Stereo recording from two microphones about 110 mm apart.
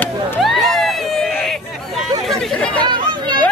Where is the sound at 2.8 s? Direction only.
45° right (ahead or behind).